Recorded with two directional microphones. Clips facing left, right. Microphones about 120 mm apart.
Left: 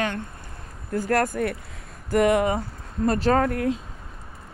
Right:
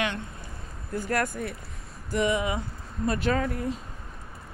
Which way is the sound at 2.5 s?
40° left (ahead or behind).